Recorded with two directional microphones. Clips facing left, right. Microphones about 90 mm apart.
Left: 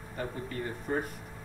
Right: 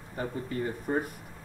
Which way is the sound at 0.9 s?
20° right (ahead or behind).